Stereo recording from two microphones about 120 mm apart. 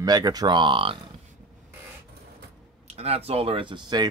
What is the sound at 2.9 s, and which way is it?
Speech, 60° right (ahead or behind).